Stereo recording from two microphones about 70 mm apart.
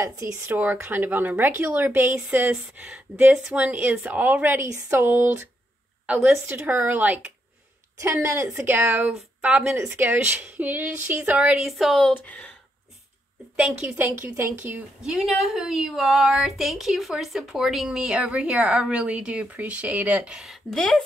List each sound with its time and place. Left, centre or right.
0.0 s speech: right
0.6 s speech: right
2.7 s speech: right
4.6 s speech: right
6.4 s speech: right
8.0 s speech: right
8.5 s speech: right
11.5 s speech: centre
12.1 s speech: left
13.6 s speech: centre
13.9 s speech: right
15.0 s speech: centre
20.7 s speech: centre